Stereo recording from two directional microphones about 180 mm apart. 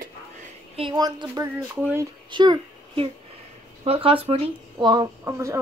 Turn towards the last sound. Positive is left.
turn(degrees=-15)  # may be behind; listen again after turning